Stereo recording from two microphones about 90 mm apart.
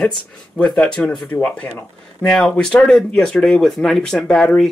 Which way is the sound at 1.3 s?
20° left (ahead or behind).